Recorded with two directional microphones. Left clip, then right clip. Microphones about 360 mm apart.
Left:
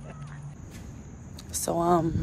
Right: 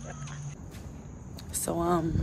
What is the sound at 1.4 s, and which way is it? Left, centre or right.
Speech, centre.